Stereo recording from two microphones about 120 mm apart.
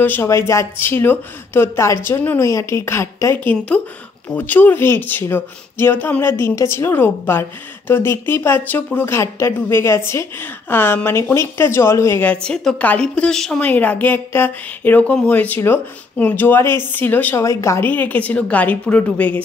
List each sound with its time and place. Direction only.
0.0 s speech: 20° left (ahead or behind)